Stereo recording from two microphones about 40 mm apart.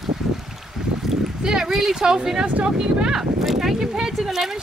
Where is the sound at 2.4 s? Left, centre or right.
Right.